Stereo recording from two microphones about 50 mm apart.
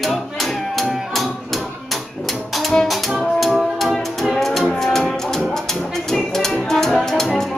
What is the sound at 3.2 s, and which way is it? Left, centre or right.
Music, centre.